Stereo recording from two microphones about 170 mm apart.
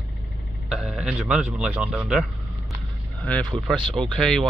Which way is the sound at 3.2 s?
5° left (ahead or behind).